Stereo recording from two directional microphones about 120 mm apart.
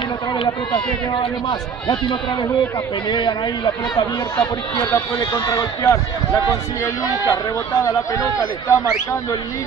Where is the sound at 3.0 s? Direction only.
40° left (ahead or behind).